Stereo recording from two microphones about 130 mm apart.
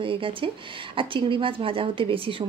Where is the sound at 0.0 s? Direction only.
40° right (ahead or behind).